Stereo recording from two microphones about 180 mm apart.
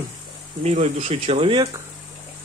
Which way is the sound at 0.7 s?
40° right (ahead or behind).